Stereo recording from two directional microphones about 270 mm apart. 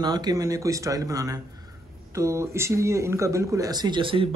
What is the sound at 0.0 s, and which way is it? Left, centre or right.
Speech, centre.